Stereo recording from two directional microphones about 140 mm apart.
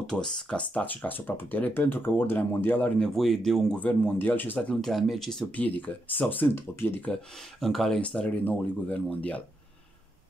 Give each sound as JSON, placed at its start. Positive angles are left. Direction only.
{"t": 0.1, "sound": "speech", "side_deg": 5}
{"t": 3.2, "sound": "speech", "side_deg": 0}
{"t": 7.6, "sound": "speech", "side_deg": 0}